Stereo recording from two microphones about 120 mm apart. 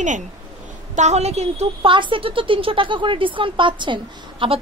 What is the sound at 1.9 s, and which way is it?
Speech, 45° right (ahead or behind).